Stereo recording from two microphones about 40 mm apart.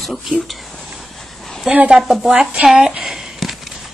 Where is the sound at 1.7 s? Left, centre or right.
Centre.